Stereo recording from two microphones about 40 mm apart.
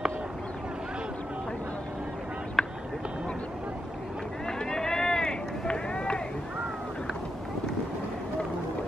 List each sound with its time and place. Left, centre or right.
2.6 s vehicle: centre
4.5 s run: centre